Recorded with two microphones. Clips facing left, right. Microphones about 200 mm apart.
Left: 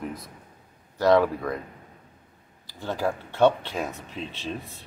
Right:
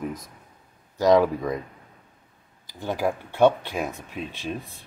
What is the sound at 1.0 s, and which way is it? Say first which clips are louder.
Speech: right 2 dB; 15° right (ahead or behind).